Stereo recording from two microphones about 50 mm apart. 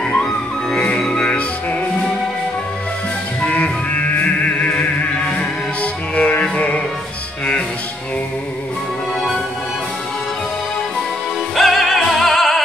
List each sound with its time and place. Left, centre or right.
0.9 s music: centre
3.4 s music: left
11.5 s music: centre